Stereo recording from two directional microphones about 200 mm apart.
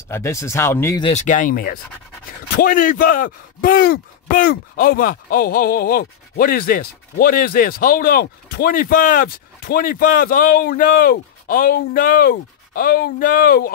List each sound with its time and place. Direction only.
0.1 s speech: 15° left (ahead or behind)
1.0 s speech: 35° left (ahead or behind)